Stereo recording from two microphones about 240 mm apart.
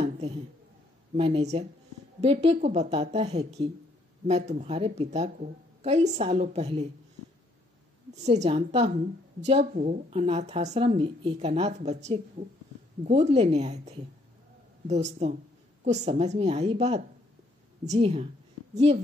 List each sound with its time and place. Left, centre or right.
1.1 s a woman's voice: right
8.1 s a woman's voice: right